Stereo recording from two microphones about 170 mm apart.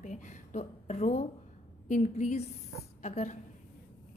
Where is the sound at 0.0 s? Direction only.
45° left (ahead or behind).